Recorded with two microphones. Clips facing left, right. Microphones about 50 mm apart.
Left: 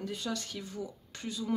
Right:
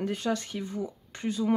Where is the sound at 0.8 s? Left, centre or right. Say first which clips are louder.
Right 8 dB; right.